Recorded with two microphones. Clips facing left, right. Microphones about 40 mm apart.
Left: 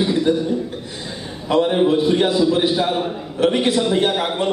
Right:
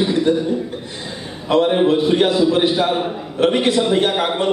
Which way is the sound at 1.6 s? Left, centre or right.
Centre.